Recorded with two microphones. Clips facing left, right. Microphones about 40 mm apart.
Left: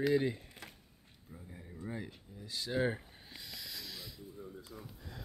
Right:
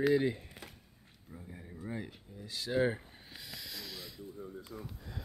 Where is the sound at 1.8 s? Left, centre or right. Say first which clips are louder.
Right 1 dB; centre.